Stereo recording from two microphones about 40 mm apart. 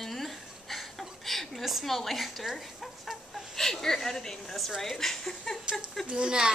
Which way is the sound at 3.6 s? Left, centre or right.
Centre.